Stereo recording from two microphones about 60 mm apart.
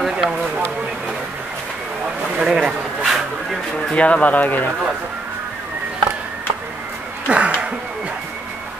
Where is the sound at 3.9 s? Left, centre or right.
Left.